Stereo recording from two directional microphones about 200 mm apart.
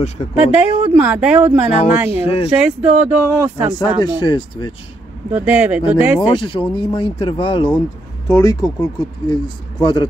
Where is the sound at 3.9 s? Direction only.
20° left (ahead or behind).